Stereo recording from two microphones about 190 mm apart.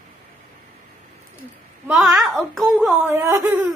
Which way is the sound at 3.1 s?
15° right (ahead or behind).